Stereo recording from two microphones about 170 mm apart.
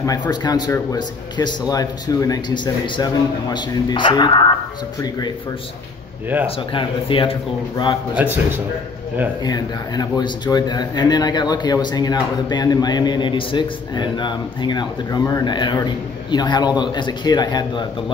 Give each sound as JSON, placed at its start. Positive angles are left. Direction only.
{"t": 0.0, "sound": "speech", "side_deg": 20}
{"t": 6.4, "sound": "speech", "side_deg": 30}
{"t": 8.1, "sound": "a man's voice", "side_deg": -10}
{"t": 9.4, "sound": "speech", "side_deg": 25}